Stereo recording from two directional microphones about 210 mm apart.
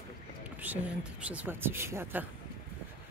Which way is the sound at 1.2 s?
5° right (ahead or behind).